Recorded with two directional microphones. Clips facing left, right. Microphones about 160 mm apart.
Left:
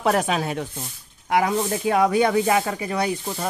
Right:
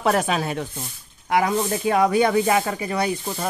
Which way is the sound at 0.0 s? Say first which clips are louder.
Even; 15° left (ahead or behind).